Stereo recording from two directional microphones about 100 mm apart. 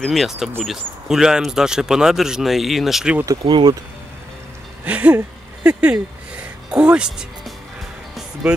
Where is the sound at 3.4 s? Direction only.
50° right (ahead or behind).